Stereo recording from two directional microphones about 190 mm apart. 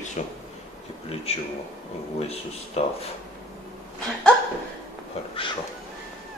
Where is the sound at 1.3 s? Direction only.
35° left (ahead or behind).